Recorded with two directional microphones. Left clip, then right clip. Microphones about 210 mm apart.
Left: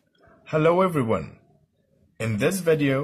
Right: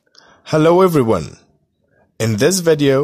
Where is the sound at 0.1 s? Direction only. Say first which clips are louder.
Right 8 dB; 45° right (ahead or behind).